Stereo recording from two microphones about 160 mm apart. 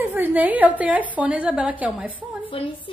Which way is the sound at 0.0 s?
15° right (ahead or behind).